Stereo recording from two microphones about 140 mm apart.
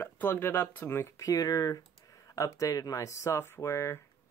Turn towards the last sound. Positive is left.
turn(degrees=20)  # may be behind; listen again after turning